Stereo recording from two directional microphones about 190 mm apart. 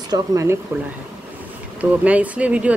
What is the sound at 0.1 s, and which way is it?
Speech, 15° right (ahead or behind).